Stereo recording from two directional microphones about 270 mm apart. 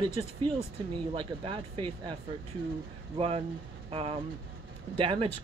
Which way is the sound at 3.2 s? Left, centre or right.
Right.